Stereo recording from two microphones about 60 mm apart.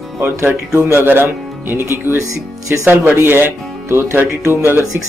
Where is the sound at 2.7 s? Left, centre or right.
Right.